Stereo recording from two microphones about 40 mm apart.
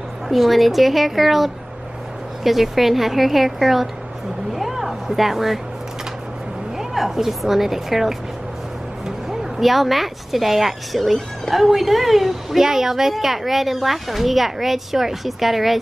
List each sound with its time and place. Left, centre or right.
0.3 s a woman's voice: centre
4.6 s music: centre
6.8 s a woman's voice: centre